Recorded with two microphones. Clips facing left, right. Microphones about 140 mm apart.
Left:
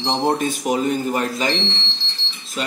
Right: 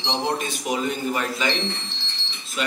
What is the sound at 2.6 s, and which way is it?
Wind chime, 35° left (ahead or behind).